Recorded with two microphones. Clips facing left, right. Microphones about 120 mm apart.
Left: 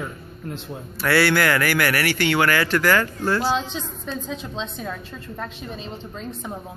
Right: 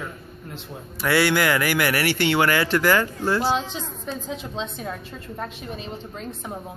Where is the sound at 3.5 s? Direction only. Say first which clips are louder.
Even; 10° right (ahead or behind).